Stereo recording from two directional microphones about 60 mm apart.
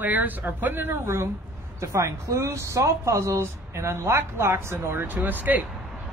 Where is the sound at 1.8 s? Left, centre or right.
Right.